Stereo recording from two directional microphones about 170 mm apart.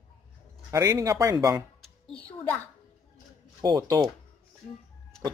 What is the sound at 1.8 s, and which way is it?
Music, 5° left (ahead or behind).